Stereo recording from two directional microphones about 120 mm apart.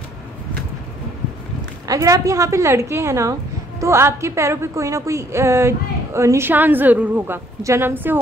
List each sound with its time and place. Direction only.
1.9 s a woman's voice: 30° right (ahead or behind)